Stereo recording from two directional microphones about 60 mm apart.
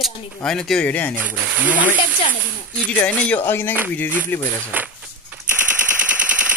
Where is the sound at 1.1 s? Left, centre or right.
Right.